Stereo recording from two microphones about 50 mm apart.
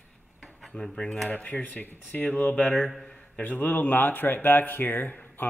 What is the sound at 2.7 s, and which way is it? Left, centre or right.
Speech, centre.